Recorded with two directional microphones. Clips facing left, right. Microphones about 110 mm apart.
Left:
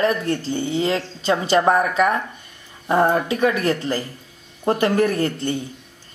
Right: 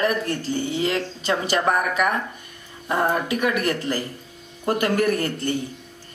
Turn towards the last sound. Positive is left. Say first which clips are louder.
# left 1 dB
turn(degrees=25)  # may be behind; listen again after turning